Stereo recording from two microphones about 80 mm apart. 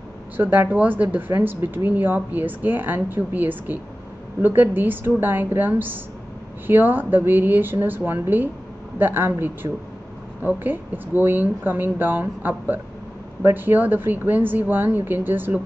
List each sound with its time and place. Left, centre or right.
0.4 s speech: right